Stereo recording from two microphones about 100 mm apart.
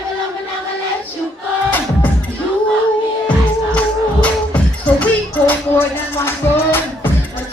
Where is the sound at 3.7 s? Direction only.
15° left (ahead or behind).